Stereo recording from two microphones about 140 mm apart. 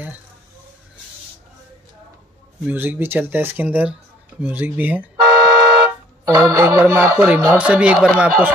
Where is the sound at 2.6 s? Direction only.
15° right (ahead or behind).